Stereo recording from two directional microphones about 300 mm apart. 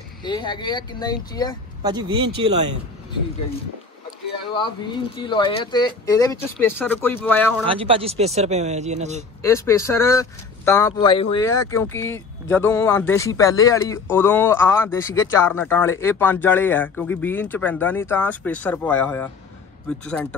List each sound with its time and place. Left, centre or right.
0.2 s speech: centre
1.8 s speech: centre
4.6 s speech: centre
7.6 s speech: centre
9.4 s speech: centre